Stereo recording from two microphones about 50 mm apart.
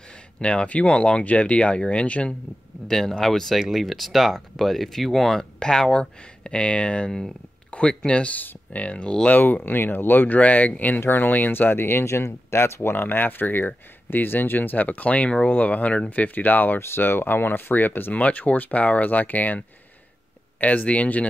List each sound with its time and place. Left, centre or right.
0.4 s speech: left
2.9 s speech: centre
7.1 s speech: centre
8.3 s speech: left
9.3 s speech: left
12.1 s speech: left
12.9 s speech: left
16.8 s speech: left
18.1 s speech: left
20.6 s speech: left